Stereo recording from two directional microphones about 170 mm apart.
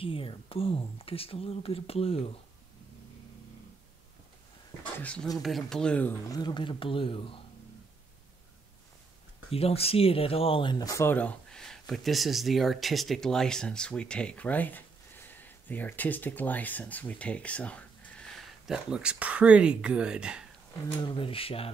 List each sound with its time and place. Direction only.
0.0 s speech: 30° left (ahead or behind)
5.0 s speech: 5° left (ahead or behind)
6.3 s speech: 25° left (ahead or behind)
9.5 s speech: 35° left (ahead or behind); by 20.4 s 5° right (ahead or behind)
20.9 s speech: 30° left (ahead or behind)